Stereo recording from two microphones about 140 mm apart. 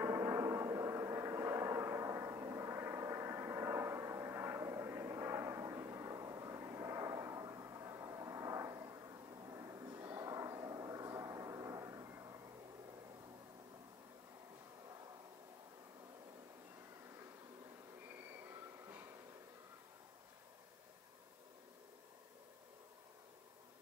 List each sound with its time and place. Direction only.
0.0 s vehicle: 20° right (ahead or behind)
18.4 s train: 15° right (ahead or behind)